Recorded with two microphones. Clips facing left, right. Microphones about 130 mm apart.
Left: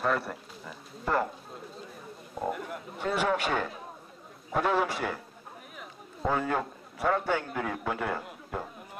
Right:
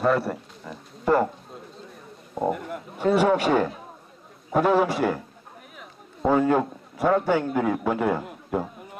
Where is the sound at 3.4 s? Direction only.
40° right (ahead or behind).